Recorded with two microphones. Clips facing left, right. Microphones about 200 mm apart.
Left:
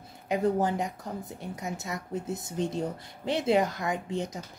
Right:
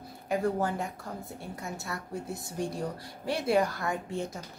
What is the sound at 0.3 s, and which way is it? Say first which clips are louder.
Speech: left 3 dB; 20° left (ahead or behind).